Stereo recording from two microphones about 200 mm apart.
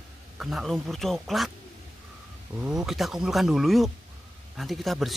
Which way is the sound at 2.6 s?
5° right (ahead or behind).